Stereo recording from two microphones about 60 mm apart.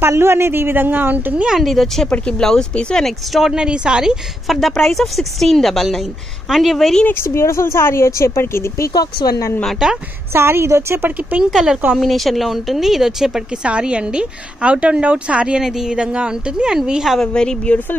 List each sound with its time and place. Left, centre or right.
0.1 s a man's voice: right
1.5 s speech: centre
2.0 s speech: centre
3.3 s a woman's voice: centre
4.5 s speech: centre
7.2 s speech: left
8.9 s speech: left
9.8 s a woman's voice: centre
10.3 s a woman's voice: right
11.5 s a woman's voice: centre
17.2 s speech: centre